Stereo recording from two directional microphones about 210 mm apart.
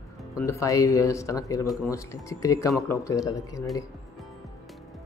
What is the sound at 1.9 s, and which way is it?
Speech, 15° left (ahead or behind).